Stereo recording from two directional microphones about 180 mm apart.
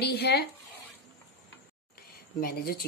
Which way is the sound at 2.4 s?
55° left (ahead or behind).